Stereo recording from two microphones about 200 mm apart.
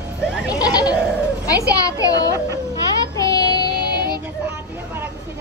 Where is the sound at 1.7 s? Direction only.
15° left (ahead or behind).